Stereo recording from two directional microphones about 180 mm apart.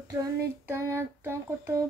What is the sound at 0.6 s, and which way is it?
Child singing, 15° right (ahead or behind).